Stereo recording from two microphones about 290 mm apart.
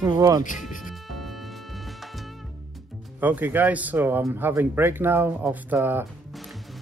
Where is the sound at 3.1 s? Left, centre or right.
Centre.